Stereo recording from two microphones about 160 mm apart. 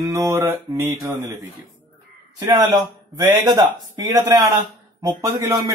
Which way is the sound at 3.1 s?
20° right (ahead or behind).